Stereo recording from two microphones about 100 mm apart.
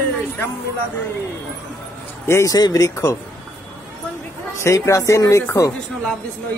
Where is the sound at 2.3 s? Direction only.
25° left (ahead or behind).